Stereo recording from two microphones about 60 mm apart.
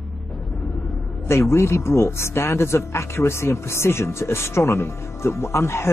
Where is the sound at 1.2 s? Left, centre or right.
Left.